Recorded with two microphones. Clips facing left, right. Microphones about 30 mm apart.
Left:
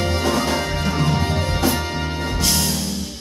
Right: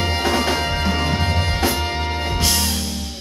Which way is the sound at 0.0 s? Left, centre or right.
Right.